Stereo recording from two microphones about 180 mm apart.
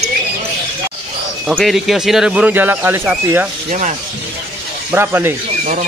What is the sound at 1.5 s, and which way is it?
Speech, centre (ahead or behind).